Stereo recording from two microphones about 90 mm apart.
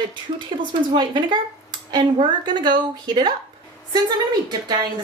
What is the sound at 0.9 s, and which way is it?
A woman's voice, 60° right (ahead or behind).